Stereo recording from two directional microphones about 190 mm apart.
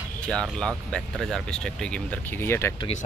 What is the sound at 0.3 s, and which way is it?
Speech, 5° left (ahead or behind).